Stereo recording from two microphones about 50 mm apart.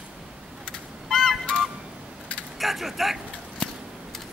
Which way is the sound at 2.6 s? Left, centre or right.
Centre.